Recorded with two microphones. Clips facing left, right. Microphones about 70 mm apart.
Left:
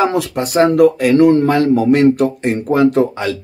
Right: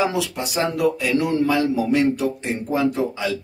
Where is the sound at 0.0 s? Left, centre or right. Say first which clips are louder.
Left 6 dB; left.